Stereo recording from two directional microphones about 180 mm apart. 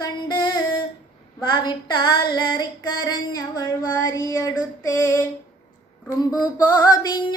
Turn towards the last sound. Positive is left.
turn(degrees=20)  # may be behind; listen again after turning